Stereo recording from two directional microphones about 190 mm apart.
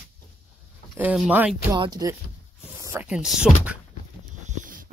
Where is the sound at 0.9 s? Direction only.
5° right (ahead or behind).